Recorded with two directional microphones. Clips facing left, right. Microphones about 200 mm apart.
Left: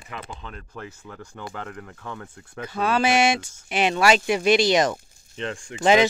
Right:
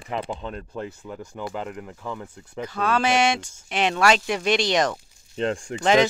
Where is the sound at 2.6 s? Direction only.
10° left (ahead or behind).